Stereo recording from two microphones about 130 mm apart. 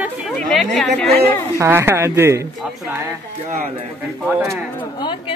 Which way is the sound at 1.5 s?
20° right (ahead or behind).